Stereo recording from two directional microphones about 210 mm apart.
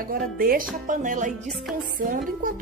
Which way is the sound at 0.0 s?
45° right (ahead or behind).